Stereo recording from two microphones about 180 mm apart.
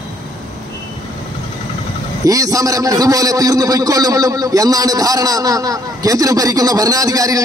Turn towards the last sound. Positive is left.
turn(degrees=-20)  # may be behind; listen again after turning